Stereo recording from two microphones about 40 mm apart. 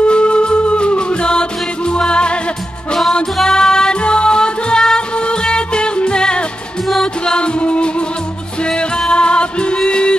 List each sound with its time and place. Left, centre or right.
0.0 s music: left
3.4 s music: centre
6.9 s music: centre
7.3 s music: left